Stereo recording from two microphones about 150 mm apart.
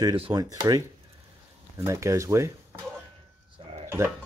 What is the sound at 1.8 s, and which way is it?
Speech, 20° right (ahead or behind).